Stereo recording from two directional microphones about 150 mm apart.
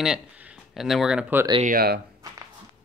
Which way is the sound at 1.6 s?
80° right.